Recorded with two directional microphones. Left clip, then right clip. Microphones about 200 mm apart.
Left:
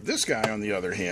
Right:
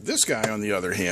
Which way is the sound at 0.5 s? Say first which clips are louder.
Right 3 dB; 20° right (ahead or behind).